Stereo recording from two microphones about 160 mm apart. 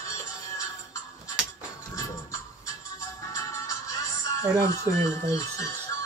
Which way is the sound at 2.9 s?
20° left (ahead or behind).